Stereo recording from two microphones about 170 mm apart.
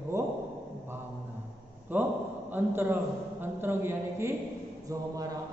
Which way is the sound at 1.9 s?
10° right (ahead or behind).